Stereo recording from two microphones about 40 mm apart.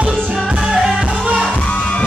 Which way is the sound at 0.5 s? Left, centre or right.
Right.